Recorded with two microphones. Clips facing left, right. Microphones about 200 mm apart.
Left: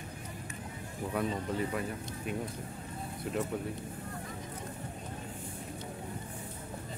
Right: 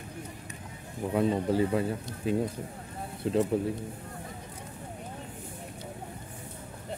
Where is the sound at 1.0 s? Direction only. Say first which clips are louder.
Right 7 dB; 20° right (ahead or behind).